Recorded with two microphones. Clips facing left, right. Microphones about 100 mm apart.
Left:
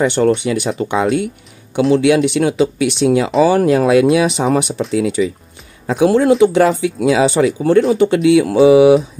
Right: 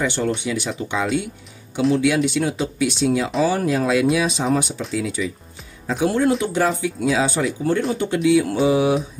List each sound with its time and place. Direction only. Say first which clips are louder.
0.0 s speech: left 8 dB; 65° left (ahead or behind)
1.9 s speech: left 6 dB; 80° left
3.4 s speech: left 8 dB; 80° left
5.9 s speech: left 7 dB; 90° left